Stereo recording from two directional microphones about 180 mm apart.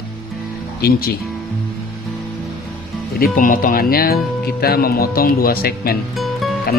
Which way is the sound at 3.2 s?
50° left (ahead or behind).